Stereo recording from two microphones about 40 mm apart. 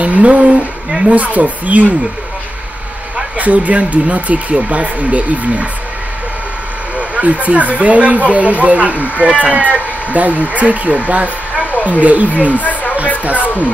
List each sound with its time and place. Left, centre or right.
0.0 s speech: right
3.3 s speech: right
7.0 s speech: right
11.5 s a sound: left
12.0 s speech: right
12.4 s speech: left